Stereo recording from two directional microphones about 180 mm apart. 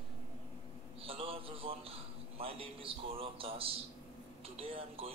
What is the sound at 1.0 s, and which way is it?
A man's voice, 30° right (ahead or behind).